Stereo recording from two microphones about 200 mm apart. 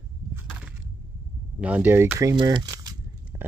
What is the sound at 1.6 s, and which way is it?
Speech, 5° right (ahead or behind).